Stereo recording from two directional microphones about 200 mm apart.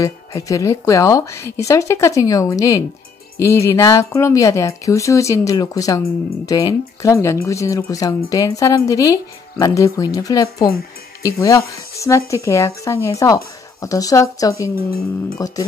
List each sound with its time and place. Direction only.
0.0 s speech: 15° left (ahead or behind)